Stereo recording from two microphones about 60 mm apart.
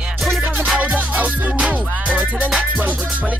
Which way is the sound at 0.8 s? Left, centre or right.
Right.